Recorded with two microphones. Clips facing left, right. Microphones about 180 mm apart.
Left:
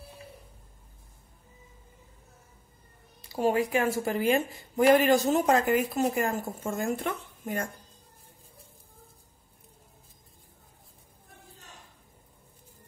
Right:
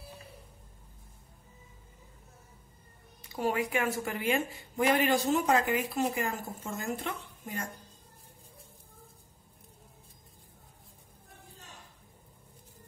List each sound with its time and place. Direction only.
3.3 s speech: 30° left (ahead or behind); by 7.6 s 55° left (ahead or behind)